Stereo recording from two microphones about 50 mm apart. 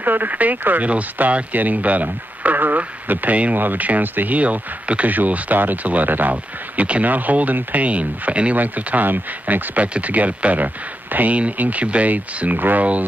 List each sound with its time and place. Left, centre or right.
0.0 s speech: right